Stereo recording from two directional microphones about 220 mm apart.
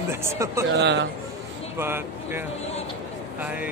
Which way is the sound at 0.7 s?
50° right (ahead or behind).